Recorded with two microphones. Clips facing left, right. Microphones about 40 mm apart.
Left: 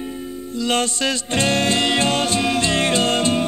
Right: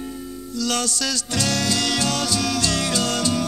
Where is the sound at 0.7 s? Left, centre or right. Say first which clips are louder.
Left 5 dB; left.